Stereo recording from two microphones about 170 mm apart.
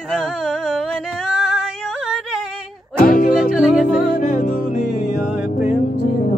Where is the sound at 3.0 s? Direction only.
55° left (ahead or behind).